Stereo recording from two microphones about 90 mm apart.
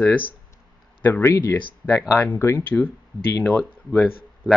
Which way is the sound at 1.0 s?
30° left (ahead or behind).